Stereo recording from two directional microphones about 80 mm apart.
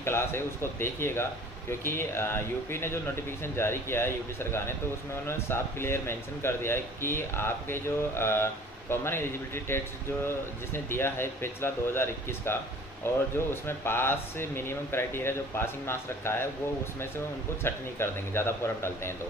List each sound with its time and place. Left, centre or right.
0.0 s a man's voice: left
10.2 s a man's voice: left
17.6 s a man's voice: left